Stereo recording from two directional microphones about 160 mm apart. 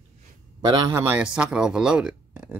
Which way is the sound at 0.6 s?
25° right (ahead or behind).